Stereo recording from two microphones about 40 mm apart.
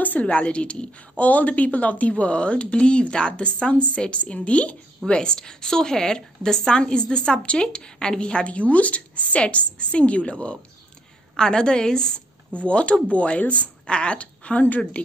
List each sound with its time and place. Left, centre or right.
0.0 s a sound: left
0.3 s a woman's voice: left
12.6 s speech: left